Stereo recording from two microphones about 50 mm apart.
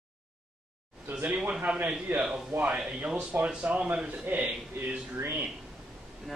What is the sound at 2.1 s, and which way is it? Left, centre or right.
Speech, right.